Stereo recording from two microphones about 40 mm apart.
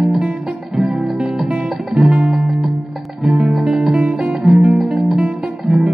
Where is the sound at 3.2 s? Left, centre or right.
Centre.